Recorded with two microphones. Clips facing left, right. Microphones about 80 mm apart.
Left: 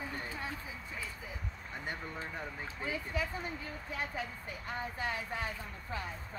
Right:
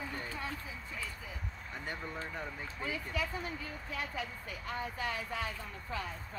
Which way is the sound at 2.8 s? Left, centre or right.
Left.